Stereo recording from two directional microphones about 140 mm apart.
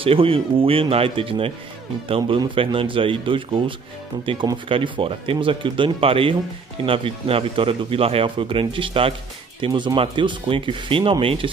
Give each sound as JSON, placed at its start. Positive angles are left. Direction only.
{"t": 0.0, "sound": "speech", "side_deg": -40}